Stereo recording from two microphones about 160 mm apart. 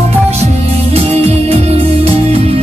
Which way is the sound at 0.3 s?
40° right (ahead or behind).